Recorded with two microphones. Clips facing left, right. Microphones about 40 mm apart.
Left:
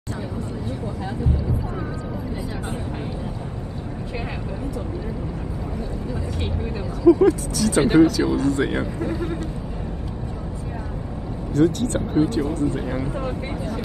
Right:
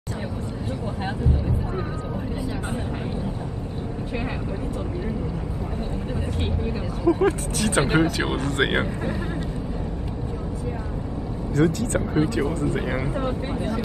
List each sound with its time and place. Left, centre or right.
7.1 s speech: right
11.5 s speech: right
12.1 s speech: right
12.5 s speech: right